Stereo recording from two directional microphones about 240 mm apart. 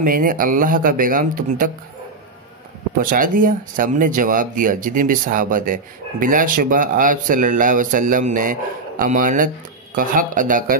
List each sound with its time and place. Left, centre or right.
0.0 s speech: right
3.0 s speech: right